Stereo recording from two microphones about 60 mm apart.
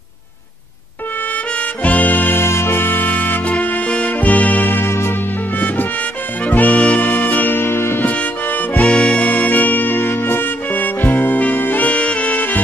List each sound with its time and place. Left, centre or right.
1.8 s music: left
2.4 s music: left
6.4 s music: left
8.0 s music: left